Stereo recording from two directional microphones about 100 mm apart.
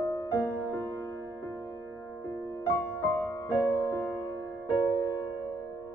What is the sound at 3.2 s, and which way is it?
Music, 35° left (ahead or behind).